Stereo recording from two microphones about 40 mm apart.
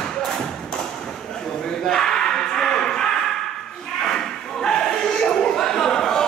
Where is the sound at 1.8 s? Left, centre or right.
Centre.